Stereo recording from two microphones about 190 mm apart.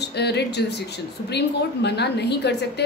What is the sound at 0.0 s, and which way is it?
Speech, 60° left (ahead or behind).